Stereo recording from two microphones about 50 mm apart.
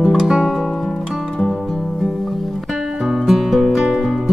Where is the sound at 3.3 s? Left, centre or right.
Centre.